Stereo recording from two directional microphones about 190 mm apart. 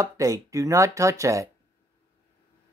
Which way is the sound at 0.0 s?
15° right (ahead or behind).